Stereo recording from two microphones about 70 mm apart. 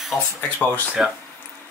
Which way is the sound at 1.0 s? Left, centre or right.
Centre.